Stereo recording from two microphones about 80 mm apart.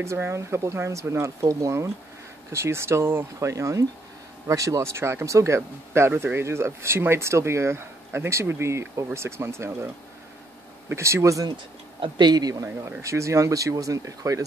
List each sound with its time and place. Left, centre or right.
0.0 s speech: right
10.9 s speech: right
12.0 s speech: right
13.0 s speech: right